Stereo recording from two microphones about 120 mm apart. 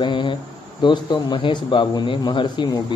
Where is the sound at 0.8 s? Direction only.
40° left (ahead or behind).